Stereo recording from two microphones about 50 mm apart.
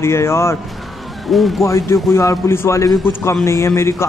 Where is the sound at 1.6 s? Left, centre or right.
Left.